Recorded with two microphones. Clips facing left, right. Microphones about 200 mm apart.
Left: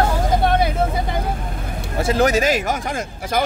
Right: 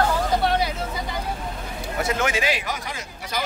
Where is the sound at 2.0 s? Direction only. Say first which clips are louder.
Left 7 dB; 35° left (ahead or behind); by 3.5 s 50° left (ahead or behind).